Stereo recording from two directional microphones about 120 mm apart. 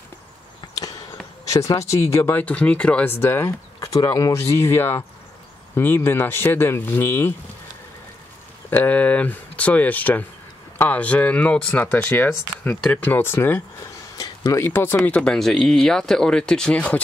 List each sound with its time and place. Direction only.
0.7 s basketball bounce: 30° left (ahead or behind)
1.5 s speech: 25° left (ahead or behind)
8.6 s speech: 15° left (ahead or behind)
14.1 s a sound: 30° left (ahead or behind)
14.6 s speech: 20° left (ahead or behind)